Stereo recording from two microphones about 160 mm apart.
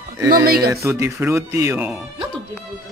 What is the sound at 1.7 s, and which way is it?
Speech, 10° right (ahead or behind).